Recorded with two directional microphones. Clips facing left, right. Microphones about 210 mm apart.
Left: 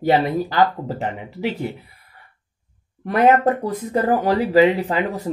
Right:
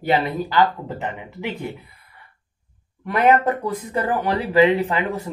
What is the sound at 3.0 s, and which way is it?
Speech, 40° left (ahead or behind).